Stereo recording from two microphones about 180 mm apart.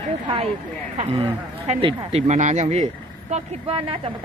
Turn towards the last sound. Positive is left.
turn(degrees=-30)  # may be behind; listen again after turning